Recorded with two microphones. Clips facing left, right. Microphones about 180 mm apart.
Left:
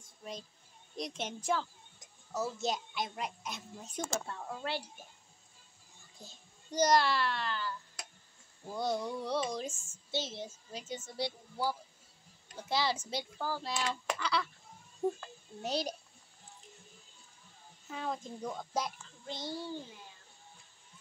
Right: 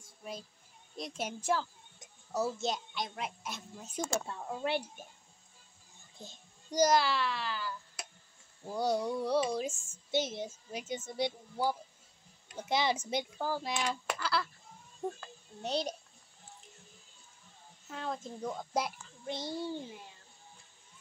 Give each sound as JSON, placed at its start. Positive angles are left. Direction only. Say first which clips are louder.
{"t": 0.2, "sound": "a child's voice", "louder": "right 1 dB", "side_deg": -5}
{"t": 2.0, "sound": "music", "louder": "right 3 dB", "side_deg": -15}
{"t": 2.6, "sound": "a child's voice", "louder": "even", "side_deg": 0}
{"t": 4.3, "sound": "speech", "louder": "right 4 dB", "side_deg": -15}
{"t": 6.1, "sound": "child singing", "louder": "right 4 dB", "side_deg": -20}
{"t": 6.8, "sound": "a child's voice", "louder": "right 1 dB", "side_deg": -5}
{"t": 14.0, "sound": "a child's voice", "louder": "even", "side_deg": -5}
{"t": 17.8, "sound": "a child's voice", "louder": "even", "side_deg": 0}